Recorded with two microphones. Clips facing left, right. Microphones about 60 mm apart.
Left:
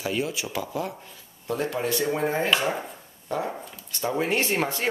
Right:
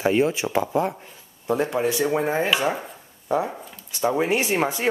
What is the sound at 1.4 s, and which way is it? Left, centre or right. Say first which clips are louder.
Speech: right 5 dB; right.